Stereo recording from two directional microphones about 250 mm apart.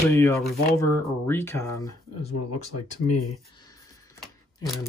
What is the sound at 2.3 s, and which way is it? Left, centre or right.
Speech, left.